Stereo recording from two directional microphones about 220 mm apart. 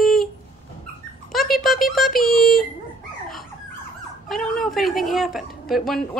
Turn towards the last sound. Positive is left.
turn(degrees=0)  # may be behind; listen again after turning